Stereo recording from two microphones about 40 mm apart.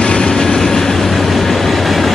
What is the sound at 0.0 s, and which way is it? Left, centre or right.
Train, left.